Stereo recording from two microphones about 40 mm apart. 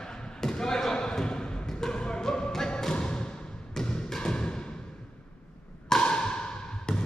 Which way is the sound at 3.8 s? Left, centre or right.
Centre.